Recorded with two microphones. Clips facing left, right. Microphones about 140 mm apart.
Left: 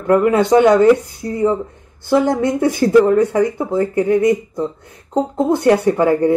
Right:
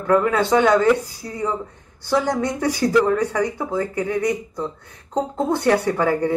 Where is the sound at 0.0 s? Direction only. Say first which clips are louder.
Left 5 dB; 20° left (ahead or behind).